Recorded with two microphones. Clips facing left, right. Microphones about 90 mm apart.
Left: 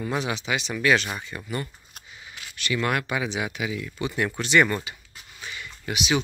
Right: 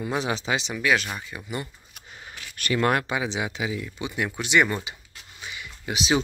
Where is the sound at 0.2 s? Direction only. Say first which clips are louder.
Right 1 dB; 30° right (ahead or behind).